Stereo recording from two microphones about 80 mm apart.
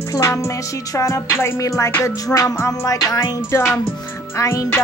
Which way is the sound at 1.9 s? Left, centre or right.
Left.